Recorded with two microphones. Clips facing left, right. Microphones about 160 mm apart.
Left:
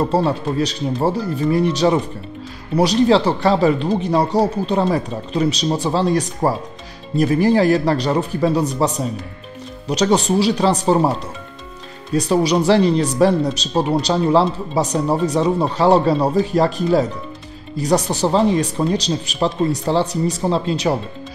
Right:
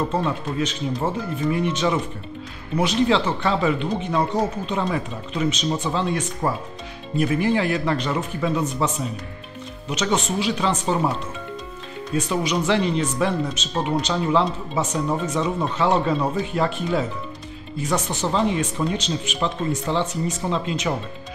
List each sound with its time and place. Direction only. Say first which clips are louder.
0.0 s speech: left 6 dB; 35° left (ahead or behind)